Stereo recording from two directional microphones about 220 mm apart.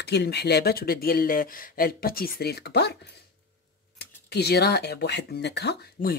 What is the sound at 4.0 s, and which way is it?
Speech, 50° left (ahead or behind).